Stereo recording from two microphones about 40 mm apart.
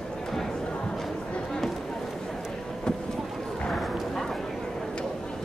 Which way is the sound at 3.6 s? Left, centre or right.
Centre.